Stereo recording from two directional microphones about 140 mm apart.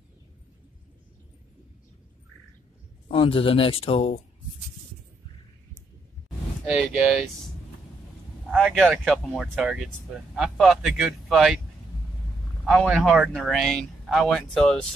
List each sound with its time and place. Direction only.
3.1 s speech: 40° left (ahead or behind)
6.6 s speech: 5° right (ahead or behind)
8.5 s speech: centre (ahead or behind)
12.6 s speech: 5° right (ahead or behind)